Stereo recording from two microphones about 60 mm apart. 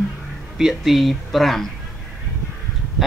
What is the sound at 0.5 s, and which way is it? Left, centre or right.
A man's voice, centre.